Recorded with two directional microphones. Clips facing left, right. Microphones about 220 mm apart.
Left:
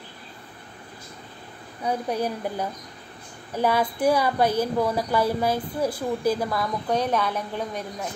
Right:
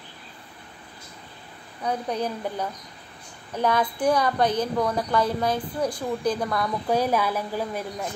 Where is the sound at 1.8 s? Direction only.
10° left (ahead or behind).